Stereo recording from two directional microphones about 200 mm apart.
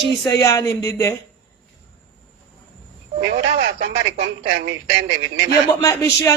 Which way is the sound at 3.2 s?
65° right (ahead or behind).